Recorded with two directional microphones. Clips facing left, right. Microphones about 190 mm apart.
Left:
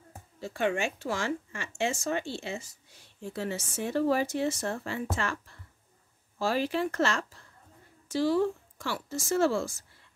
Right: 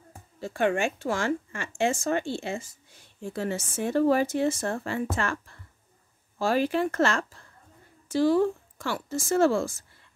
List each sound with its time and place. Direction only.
0.4 s a woman's voice: 50° right (ahead or behind)